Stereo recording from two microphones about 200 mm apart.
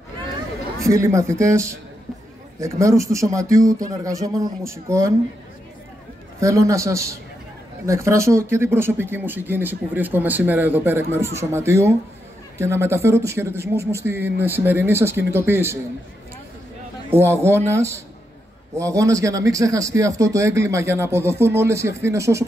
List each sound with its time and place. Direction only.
0.8 s speech: 15° right (ahead or behind)
6.4 s speech: 15° right (ahead or behind)
17.1 s speech: 10° right (ahead or behind)